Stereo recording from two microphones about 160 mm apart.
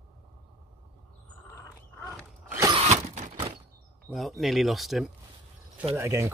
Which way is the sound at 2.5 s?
25° right (ahead or behind).